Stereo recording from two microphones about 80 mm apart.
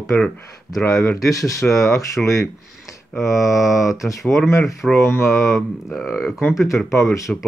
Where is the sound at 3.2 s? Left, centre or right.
Left.